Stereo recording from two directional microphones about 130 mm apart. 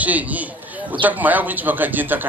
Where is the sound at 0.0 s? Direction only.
10° right (ahead or behind).